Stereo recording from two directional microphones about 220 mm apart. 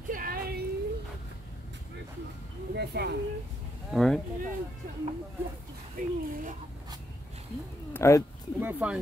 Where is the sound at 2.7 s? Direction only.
50° right (ahead or behind).